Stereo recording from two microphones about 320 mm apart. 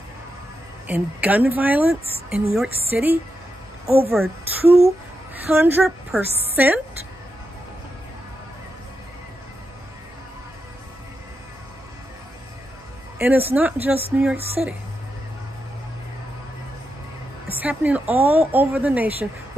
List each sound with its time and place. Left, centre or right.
0.8 s speech: centre
3.8 s speech: centre
5.4 s speech: centre
13.2 s speech: centre
17.5 s a woman's voice: centre